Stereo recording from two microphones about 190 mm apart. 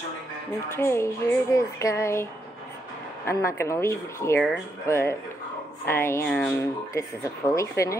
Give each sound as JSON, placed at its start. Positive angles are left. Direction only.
{"t": 0.7, "sound": "speech", "side_deg": 10}
{"t": 3.3, "sound": "speech", "side_deg": 15}